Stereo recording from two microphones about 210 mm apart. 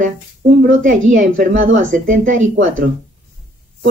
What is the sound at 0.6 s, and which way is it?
Speech, 40° right (ahead or behind).